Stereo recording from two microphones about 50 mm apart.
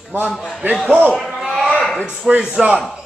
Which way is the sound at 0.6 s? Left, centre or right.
Right.